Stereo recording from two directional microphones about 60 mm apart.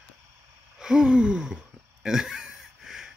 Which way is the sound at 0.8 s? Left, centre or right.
Centre.